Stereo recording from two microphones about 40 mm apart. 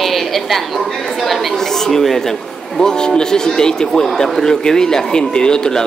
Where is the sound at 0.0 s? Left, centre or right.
Centre.